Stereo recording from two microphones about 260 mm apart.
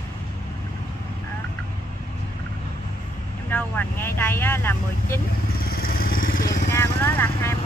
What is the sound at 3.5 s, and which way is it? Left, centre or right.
Speech, centre.